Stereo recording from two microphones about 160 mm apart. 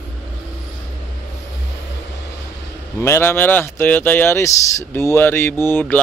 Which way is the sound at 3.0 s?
15° left (ahead or behind).